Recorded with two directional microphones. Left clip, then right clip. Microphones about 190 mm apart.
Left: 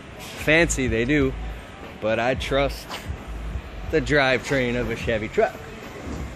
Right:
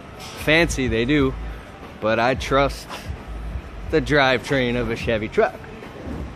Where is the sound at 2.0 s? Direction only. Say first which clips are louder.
Right 3 dB; 25° right (ahead or behind).